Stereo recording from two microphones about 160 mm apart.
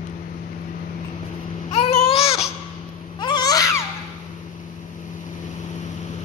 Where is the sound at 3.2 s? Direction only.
25° left (ahead or behind).